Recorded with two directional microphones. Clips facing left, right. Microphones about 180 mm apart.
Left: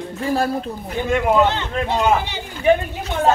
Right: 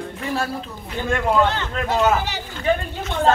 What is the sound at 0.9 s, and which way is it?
A man's voice, 15° left (ahead or behind).